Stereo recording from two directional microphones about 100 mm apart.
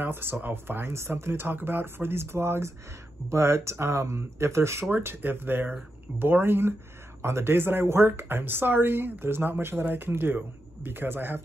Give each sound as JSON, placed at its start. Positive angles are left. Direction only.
{"t": 0.0, "sound": "speech", "side_deg": -20}